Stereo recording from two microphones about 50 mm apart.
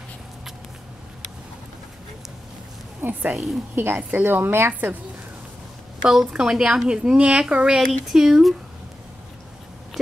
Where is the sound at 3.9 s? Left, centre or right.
Right.